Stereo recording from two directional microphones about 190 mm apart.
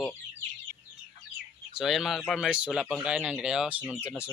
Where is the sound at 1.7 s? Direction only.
Centre (ahead or behind).